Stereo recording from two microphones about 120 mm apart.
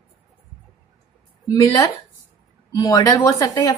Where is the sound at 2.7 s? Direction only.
30° left (ahead or behind).